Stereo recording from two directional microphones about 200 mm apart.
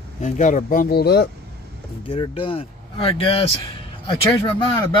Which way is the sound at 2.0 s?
25° left (ahead or behind).